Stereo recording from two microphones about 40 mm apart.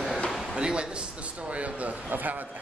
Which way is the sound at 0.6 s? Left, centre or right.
Right.